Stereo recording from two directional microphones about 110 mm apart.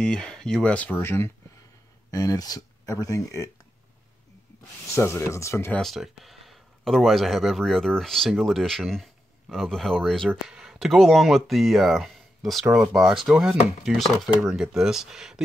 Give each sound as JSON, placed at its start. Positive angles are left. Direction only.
{"t": 0.0, "sound": "speech", "side_deg": 5}
{"t": 0.9, "sound": "speech", "side_deg": 20}
{"t": 2.0, "sound": "speech", "side_deg": 35}
{"t": 4.8, "sound": "speech", "side_deg": 25}
{"t": 5.7, "sound": "speech", "side_deg": 5}